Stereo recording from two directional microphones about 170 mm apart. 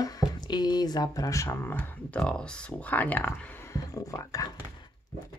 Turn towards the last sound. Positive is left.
turn(degrees=20)  # may be behind; listen again after turning